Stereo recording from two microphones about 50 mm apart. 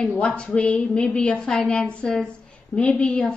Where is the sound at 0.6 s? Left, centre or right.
Left.